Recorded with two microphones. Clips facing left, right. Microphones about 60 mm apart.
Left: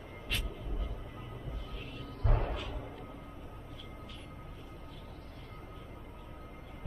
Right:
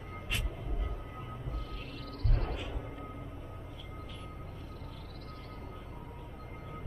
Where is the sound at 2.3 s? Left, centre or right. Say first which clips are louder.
Left 4 dB; centre.